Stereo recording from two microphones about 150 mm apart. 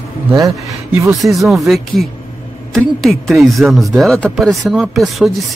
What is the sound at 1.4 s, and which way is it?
Speech, centre (ahead or behind).